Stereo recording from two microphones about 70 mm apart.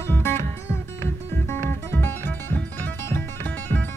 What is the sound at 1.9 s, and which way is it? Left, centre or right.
Music, left.